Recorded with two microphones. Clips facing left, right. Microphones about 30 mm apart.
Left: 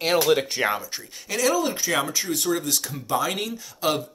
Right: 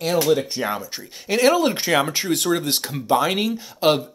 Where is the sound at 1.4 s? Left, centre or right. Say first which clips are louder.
Right 5 dB; right.